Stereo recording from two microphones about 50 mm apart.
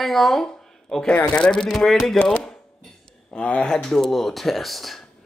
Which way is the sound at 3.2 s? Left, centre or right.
Left.